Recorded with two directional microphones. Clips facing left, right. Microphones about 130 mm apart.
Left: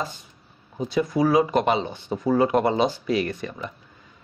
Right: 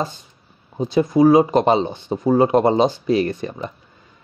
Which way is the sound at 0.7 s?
25° right (ahead or behind).